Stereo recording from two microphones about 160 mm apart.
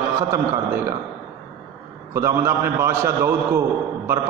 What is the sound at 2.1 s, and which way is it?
A man's voice, 15° right (ahead or behind).